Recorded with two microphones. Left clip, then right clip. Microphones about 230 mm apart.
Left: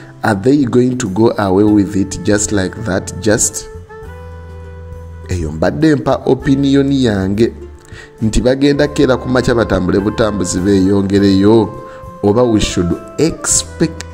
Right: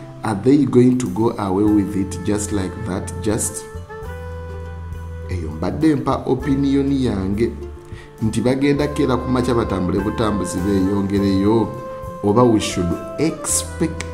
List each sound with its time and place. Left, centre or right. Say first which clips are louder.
0.2 s speech: left 4 dB; left
5.3 s speech: left 10 dB; left